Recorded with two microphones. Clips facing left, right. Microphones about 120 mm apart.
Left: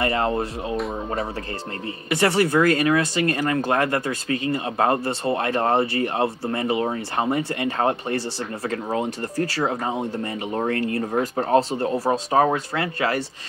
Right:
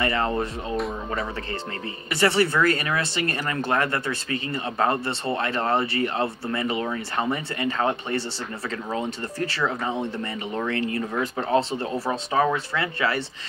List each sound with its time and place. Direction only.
0.0 s speech: 50° left (ahead or behind)
2.0 s speech: 45° left (ahead or behind)
9.4 s speech: 40° left (ahead or behind)